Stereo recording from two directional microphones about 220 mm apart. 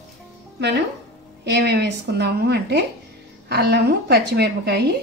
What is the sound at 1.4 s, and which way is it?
A woman's voice, 50° right (ahead or behind).